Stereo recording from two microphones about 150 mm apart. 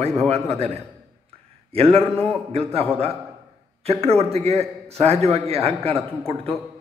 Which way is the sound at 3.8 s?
40° right (ahead or behind).